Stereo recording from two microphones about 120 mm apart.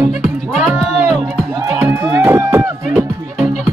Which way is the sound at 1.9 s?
25° right (ahead or behind).